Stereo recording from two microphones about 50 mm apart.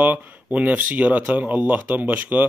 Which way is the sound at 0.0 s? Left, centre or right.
Right.